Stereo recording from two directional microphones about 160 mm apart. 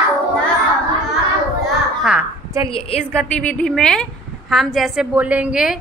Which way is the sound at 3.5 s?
5° left (ahead or behind).